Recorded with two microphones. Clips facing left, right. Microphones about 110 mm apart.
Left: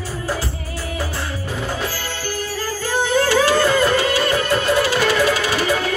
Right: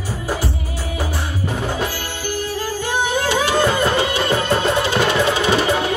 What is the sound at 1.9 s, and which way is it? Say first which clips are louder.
Music: right 1 dB; 15° right (ahead or behind).